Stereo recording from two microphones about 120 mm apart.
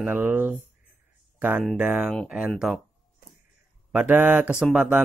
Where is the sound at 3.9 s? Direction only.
15° right (ahead or behind).